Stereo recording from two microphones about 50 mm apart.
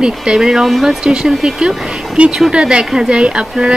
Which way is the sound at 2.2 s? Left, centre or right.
Right.